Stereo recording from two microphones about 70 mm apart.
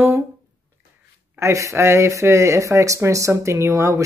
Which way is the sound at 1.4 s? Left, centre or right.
Right.